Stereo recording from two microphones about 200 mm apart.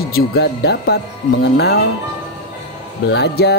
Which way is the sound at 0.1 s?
55° left (ahead or behind).